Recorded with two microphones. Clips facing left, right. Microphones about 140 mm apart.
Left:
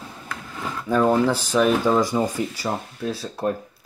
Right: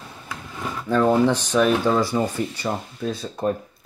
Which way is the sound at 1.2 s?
5° left (ahead or behind).